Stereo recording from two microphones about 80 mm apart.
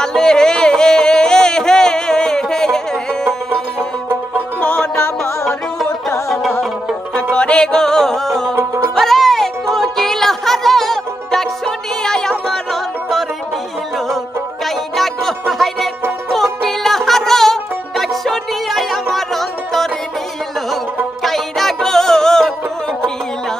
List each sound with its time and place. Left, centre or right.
0.0 s music: centre
4.6 s music: centre
4.9 s music: left
7.2 s music: centre
8.5 s music: right
8.9 s music: centre
15.6 s music: centre
21.2 s music: centre